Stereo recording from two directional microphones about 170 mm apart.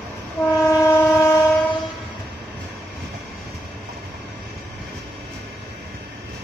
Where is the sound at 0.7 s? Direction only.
15° left (ahead or behind).